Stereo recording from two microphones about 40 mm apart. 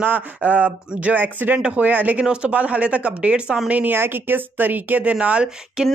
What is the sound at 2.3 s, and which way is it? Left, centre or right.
Speech, right.